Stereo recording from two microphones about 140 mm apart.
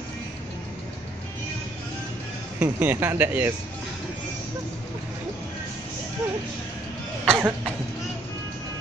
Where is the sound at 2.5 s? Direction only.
10° right (ahead or behind).